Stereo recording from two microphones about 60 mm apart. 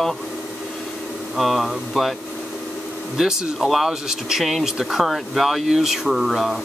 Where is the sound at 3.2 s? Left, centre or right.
Centre.